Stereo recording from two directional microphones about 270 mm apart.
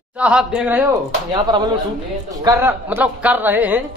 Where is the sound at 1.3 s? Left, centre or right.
Centre.